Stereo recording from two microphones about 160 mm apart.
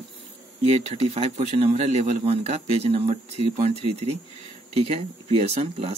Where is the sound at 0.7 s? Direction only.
40° right (ahead or behind).